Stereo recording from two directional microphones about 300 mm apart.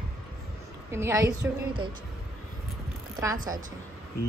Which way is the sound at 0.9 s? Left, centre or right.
Centre.